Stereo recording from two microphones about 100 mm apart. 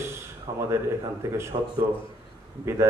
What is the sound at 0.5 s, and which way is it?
Speech, 35° right (ahead or behind).